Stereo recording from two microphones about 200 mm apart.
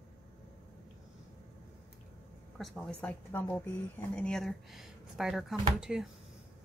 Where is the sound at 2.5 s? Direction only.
Centre (ahead or behind).